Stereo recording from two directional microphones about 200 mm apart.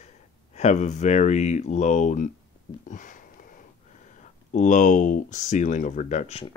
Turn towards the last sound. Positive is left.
turn(degrees=35)  # may be behind; listen again after turning